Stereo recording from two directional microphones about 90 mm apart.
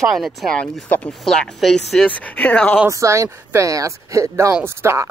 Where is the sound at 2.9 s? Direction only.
35° right (ahead or behind).